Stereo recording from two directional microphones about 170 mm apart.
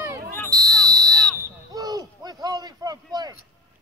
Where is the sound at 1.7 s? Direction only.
20° right (ahead or behind).